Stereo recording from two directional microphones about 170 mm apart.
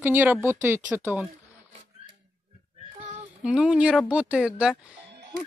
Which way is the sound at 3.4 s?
5° right (ahead or behind).